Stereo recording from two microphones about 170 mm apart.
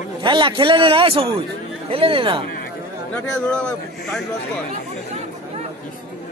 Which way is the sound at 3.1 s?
5° left (ahead or behind).